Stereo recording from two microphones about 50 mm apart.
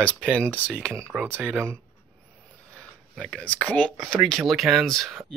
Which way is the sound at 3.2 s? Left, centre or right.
Left.